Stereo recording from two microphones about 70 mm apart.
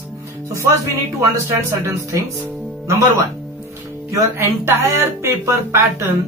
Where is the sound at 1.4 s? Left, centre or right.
Right.